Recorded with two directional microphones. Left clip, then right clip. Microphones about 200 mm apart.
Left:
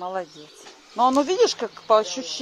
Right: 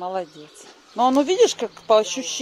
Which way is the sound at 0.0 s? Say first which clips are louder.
Right 2 dB; 20° right (ahead or behind).